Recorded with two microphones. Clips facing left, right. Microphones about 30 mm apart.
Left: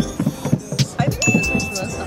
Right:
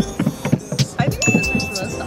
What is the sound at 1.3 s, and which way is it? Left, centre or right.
Music, right.